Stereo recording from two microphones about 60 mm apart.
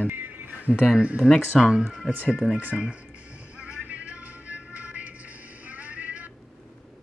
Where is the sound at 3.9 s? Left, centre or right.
Right.